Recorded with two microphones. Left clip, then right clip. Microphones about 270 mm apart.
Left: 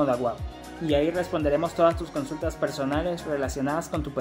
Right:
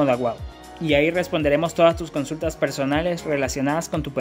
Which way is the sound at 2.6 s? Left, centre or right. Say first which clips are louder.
Right 5 dB; right.